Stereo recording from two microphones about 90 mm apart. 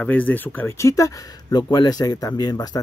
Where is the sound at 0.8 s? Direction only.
35° left (ahead or behind).